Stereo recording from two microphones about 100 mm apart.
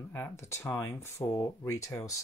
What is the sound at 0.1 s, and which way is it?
Speech, 25° left (ahead or behind).